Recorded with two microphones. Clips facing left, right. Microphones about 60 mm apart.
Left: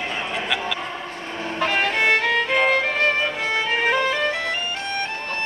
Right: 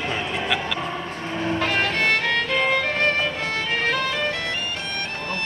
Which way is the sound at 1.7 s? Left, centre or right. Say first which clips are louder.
Left 4 dB; centre.